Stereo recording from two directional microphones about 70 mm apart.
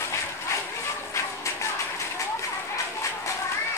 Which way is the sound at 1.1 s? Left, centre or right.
Left.